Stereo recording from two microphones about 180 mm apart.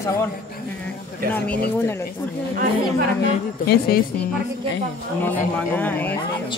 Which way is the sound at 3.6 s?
60° left (ahead or behind).